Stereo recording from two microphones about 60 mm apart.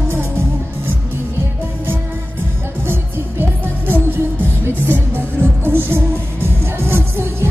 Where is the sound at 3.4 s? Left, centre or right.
Right.